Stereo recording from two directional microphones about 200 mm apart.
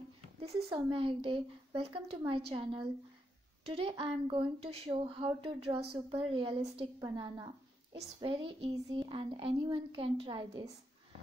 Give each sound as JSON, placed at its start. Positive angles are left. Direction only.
{"t": 0.4, "sound": "speech", "side_deg": -30}